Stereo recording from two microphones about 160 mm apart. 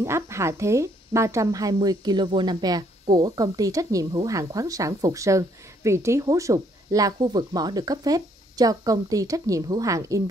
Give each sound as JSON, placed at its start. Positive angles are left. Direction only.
{"t": 0.0, "sound": "speech", "side_deg": -15}